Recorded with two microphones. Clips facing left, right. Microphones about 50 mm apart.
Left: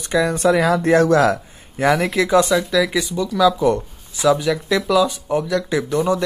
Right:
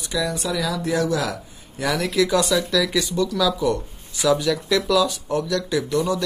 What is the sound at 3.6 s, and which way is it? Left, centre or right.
Speech, left.